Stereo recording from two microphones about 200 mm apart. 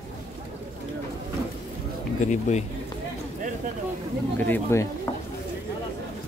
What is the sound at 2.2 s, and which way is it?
Speech, 35° left (ahead or behind).